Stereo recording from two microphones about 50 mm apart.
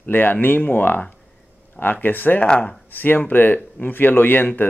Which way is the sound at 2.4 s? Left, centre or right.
Left.